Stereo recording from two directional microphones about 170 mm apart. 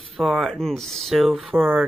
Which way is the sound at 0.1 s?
Centre (ahead or behind).